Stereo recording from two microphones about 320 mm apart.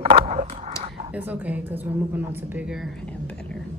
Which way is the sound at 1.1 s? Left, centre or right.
Centre.